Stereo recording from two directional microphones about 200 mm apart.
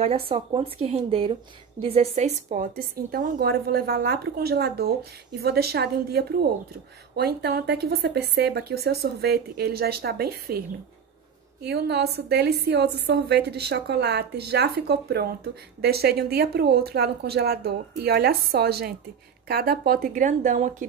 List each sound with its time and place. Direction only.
0.0 s a woman's voice: 30° right (ahead or behind); by 10.6 s 50° right (ahead or behind)
11.6 s a woman's voice: 55° right (ahead or behind); by 20.7 s 35° right (ahead or behind)